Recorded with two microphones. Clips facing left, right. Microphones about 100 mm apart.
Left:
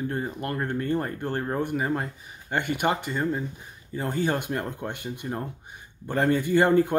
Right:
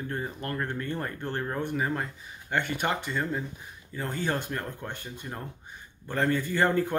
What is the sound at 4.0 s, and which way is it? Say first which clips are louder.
Speech: left 4 dB; 15° left (ahead or behind).